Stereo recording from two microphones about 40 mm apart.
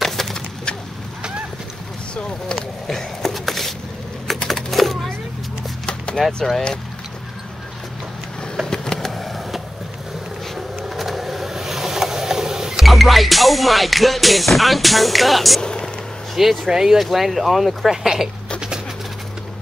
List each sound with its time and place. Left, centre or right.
0.0 s bird: centre
2.5 s a sound: centre
4.3 s typing: centre
4.6 s a sound: centre
6.2 s music: centre
8.6 s vehicle: centre
11.0 s vehicle: centre
12.8 s music: centre
15.6 s a sound: centre
16.3 s speech: centre
17.0 s music: centre
18.0 s speech: centre